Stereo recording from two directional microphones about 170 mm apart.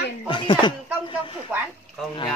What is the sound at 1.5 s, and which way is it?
Speech, 5° right (ahead or behind).